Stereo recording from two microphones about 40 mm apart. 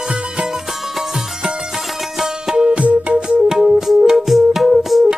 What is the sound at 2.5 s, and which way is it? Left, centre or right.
Music, right.